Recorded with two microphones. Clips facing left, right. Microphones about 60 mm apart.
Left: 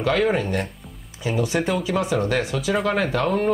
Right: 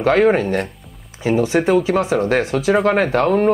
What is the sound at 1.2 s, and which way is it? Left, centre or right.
Speech, right.